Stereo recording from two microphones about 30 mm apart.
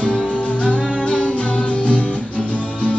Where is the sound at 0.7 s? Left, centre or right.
Left.